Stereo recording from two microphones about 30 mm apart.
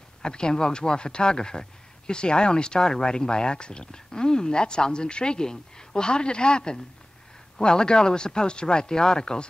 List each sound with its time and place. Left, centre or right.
0.2 s speech: left